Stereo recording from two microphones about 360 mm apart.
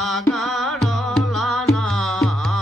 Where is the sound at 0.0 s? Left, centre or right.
Centre.